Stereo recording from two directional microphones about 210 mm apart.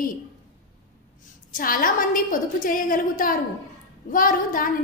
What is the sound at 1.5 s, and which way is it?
A woman's voice, 40° left (ahead or behind).